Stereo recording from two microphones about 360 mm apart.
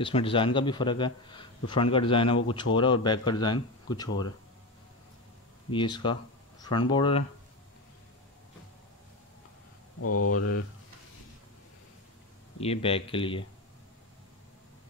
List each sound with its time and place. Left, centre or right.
0.0 s a man's voice: centre
5.7 s a man's voice: centre
9.9 s speech: left
12.5 s a man's voice: centre